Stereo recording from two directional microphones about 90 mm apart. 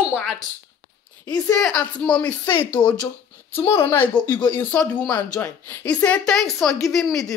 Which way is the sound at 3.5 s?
25° left (ahead or behind).